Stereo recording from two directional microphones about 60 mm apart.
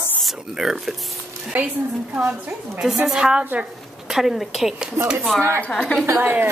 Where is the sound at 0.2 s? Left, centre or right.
Centre.